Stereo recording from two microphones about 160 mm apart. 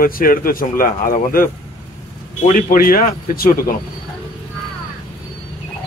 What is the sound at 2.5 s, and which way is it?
Speech, 60° left (ahead or behind).